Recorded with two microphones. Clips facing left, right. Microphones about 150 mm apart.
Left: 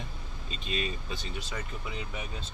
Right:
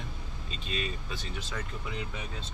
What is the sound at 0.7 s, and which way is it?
Speech, 20° left (ahead or behind).